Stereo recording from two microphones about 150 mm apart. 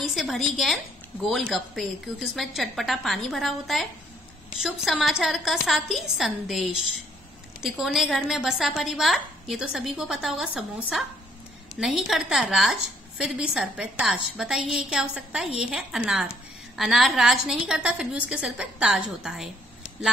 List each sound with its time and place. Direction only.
0.0 s a woman's voice: centre (ahead or behind)